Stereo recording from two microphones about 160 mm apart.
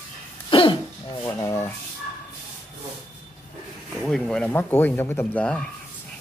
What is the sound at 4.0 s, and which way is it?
Speech, 5° left (ahead or behind).